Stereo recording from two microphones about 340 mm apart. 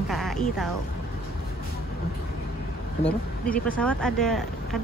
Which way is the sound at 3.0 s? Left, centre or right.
Centre.